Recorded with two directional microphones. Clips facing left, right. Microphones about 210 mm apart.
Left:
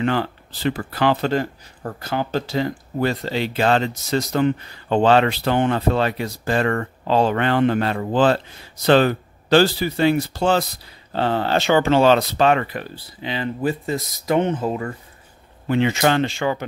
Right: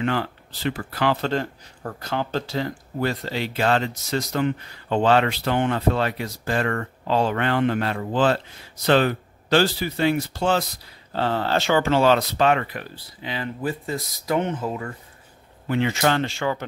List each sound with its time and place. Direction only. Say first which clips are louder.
0.0 s speech: left 3 dB; 30° left (ahead or behind)
1.2 s speech: left 3 dB; 5° left (ahead or behind)
3.0 s speech: left 4 dB; 25° left (ahead or behind)
11.1 s speech: left 3 dB; 20° left (ahead or behind)